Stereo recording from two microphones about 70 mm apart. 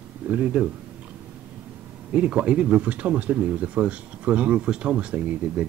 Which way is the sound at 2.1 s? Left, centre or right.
Centre.